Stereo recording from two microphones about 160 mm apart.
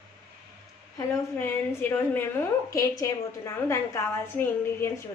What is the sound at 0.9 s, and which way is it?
A woman's voice, 15° left (ahead or behind).